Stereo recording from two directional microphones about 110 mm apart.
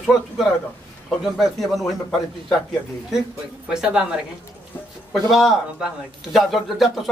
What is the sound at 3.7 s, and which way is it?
A woman's voice, 5° right (ahead or behind).